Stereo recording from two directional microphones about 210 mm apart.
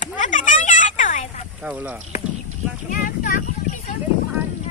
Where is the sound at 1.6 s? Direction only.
5° right (ahead or behind).